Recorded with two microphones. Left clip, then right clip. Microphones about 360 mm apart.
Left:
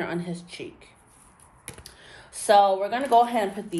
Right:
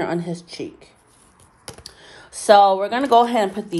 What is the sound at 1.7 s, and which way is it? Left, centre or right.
Speech, centre.